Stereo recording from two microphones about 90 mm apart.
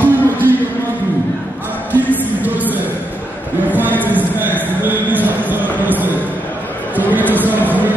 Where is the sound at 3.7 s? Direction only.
20° right (ahead or behind).